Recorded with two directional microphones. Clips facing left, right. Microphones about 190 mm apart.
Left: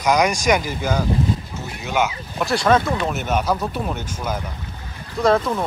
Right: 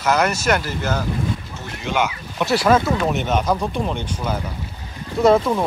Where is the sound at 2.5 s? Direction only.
5° right (ahead or behind).